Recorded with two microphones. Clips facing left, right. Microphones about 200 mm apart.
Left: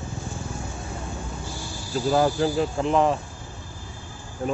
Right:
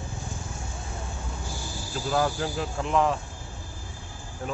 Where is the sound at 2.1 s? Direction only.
30° left (ahead or behind).